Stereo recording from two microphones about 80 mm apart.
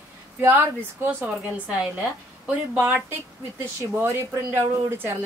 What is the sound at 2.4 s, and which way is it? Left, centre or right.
A woman's voice, right.